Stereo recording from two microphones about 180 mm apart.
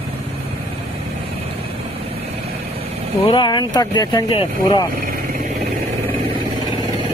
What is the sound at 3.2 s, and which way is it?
Speech, 25° left (ahead or behind).